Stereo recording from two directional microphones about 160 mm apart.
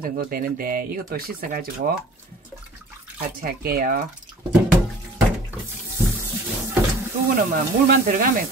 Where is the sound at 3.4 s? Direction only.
60° right (ahead or behind).